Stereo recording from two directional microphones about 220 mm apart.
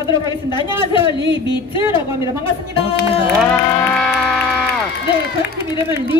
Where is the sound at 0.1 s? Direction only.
20° left (ahead or behind).